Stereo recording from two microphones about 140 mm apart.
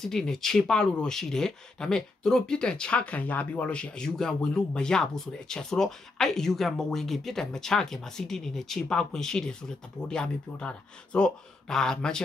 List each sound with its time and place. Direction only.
0.0 s speech: 5° left (ahead or behind)